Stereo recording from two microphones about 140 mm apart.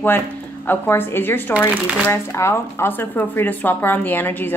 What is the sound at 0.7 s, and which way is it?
Speech, 15° left (ahead or behind).